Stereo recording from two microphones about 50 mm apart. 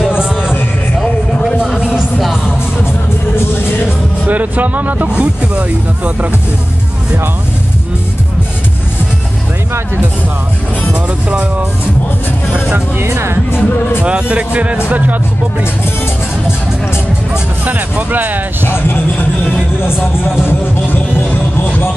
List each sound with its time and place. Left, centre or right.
0.2 s music: centre
0.9 s music: centre
1.8 s music: centre
4.3 s vehicle: right
5.1 s speech: right
13.0 s speech: right
13.5 s speech: left
14.0 s speech: right
17.6 s speech: right
18.7 s speech: left